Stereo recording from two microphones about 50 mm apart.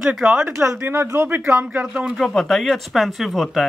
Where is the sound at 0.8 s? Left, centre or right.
Right.